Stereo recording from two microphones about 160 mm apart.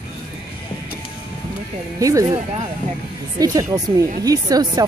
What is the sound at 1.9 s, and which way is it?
Speech, 20° right (ahead or behind).